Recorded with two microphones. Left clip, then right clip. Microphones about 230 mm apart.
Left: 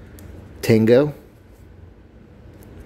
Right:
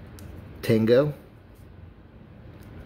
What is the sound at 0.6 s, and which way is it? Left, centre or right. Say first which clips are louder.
Speech: left 5 dB; left.